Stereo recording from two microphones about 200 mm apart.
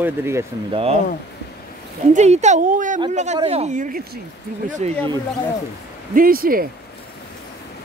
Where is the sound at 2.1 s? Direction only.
35° right (ahead or behind).